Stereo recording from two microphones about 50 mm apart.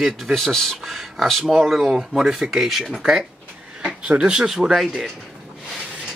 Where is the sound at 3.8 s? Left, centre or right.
Centre.